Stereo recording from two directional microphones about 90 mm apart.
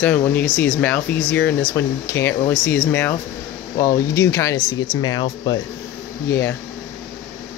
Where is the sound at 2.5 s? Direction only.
20° left (ahead or behind).